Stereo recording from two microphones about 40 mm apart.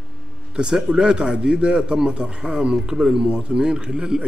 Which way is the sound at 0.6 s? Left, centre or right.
Right.